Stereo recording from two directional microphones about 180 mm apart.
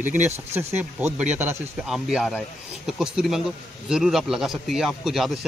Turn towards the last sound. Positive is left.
turn(degrees=0)  # may be behind; listen again after turning